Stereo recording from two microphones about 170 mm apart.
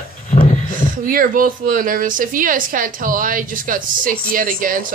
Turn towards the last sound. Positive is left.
turn(degrees=-55)  # may be behind; listen again after turning